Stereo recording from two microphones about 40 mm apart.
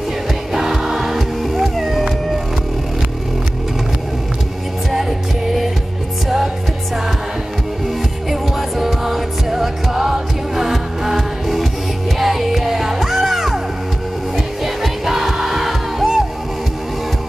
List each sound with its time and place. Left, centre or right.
0.5 s music: centre
6.2 s music: centre
8.3 s music: centre